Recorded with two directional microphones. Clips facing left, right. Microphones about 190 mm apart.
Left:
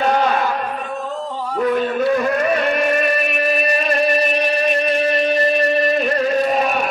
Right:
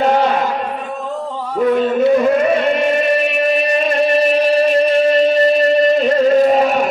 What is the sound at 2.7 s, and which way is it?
Music, 25° right (ahead or behind).